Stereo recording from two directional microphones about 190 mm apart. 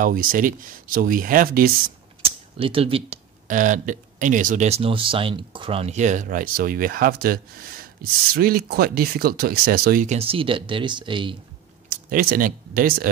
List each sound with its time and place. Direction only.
0.0 s speech: 45° right (ahead or behind)
2.2 s speech: 30° right (ahead or behind); by 10.1 s 50° right (ahead or behind)
10.1 s speech: 30° right (ahead or behind)
11.9 s speech: 50° right (ahead or behind)